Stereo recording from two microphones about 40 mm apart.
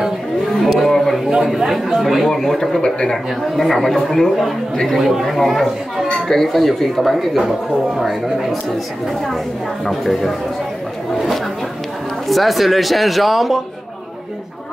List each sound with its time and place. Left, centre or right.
0.5 s a sound: centre
1.7 s speech: centre
2.2 s speech: centre
2.8 s speech: centre
3.5 s speech: centre
9.8 s speech: centre
12.3 s speech: centre